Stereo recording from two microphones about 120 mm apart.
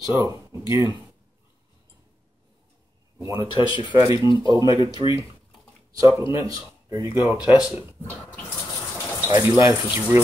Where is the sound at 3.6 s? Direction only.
30° right (ahead or behind).